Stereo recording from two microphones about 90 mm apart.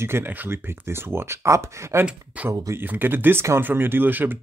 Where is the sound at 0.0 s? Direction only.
25° right (ahead or behind).